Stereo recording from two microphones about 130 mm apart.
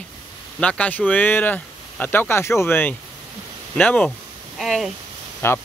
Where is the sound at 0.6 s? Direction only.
10° left (ahead or behind).